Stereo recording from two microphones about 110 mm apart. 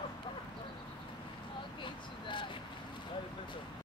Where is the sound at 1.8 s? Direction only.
50° left (ahead or behind).